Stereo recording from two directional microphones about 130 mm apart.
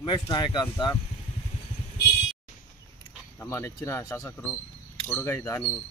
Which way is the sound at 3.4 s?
20° left (ahead or behind).